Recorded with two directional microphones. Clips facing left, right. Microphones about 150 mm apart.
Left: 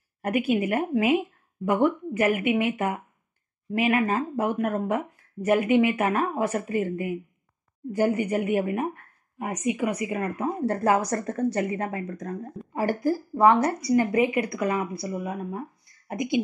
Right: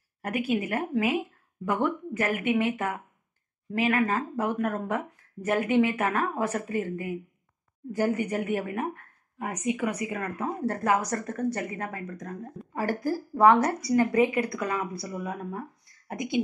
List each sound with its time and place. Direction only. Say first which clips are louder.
0.2 s a woman's voice: left 4 dB; 20° left (ahead or behind)
13.4 s speech: even; 5° left (ahead or behind)